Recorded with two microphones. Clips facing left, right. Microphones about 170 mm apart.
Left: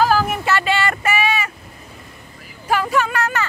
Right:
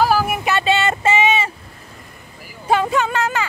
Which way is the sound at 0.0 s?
5° right (ahead or behind).